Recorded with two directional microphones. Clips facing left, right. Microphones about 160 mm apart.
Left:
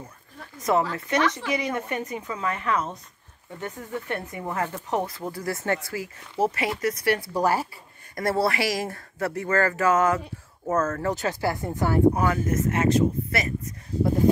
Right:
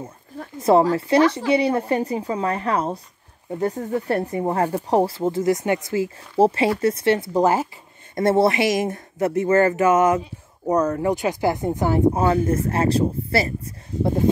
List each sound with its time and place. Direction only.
0.6 s speech: 30° right (ahead or behind)